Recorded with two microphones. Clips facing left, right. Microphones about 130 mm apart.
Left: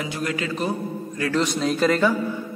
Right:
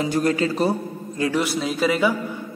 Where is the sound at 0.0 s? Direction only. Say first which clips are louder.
Right 7 dB; 35° right (ahead or behind).